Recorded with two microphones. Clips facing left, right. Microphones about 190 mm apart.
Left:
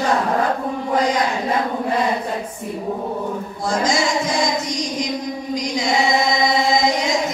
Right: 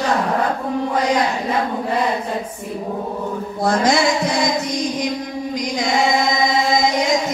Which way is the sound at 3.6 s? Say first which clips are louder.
Right 4 dB; 60° right (ahead or behind).